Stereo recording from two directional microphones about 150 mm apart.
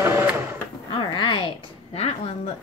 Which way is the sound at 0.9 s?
35° left (ahead or behind).